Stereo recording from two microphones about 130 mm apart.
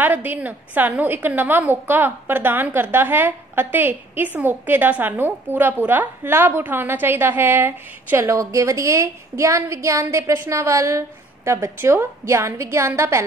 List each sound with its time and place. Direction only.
0.0 s a woman's voice: 15° right (ahead or behind)